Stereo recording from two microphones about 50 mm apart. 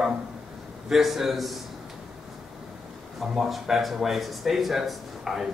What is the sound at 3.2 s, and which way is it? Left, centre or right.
Speech, centre.